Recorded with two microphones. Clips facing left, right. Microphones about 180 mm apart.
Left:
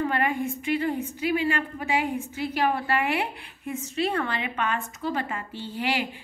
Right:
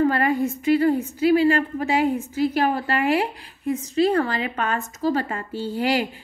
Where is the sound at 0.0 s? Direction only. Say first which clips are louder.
Right 6 dB; 40° right (ahead or behind).